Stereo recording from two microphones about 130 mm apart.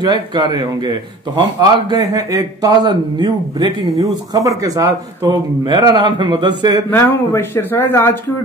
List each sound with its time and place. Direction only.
0.0 s a man's voice: 35° right (ahead or behind)
6.9 s speech: 15° left (ahead or behind)